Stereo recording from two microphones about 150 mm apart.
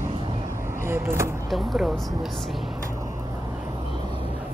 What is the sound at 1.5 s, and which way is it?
Speech, centre (ahead or behind).